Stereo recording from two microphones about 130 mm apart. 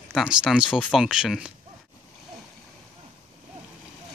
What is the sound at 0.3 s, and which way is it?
Speech, 5° right (ahead or behind).